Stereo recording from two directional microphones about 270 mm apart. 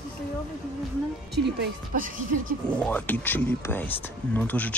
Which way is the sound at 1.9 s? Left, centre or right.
Right.